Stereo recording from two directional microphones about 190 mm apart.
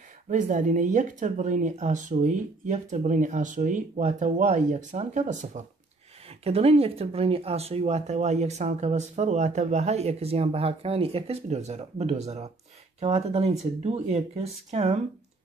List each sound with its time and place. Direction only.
0.3 s speech: 40° right (ahead or behind)